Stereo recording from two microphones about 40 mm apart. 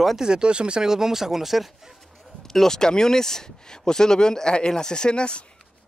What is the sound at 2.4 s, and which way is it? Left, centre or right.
Speech, centre.